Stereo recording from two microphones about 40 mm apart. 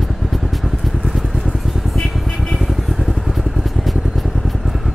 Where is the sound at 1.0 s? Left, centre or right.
Centre.